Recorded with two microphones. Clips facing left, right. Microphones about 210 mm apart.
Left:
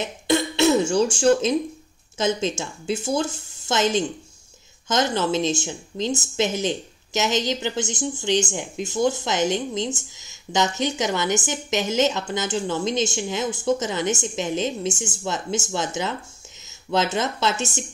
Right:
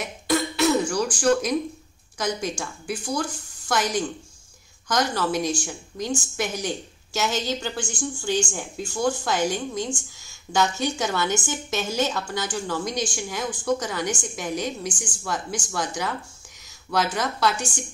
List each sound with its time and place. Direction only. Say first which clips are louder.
0.0 s a woman's voice: left 2 dB; 25° left (ahead or behind)